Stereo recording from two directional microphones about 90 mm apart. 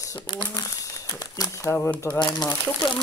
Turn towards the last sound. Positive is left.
turn(degrees=60)  # may be behind; listen again after turning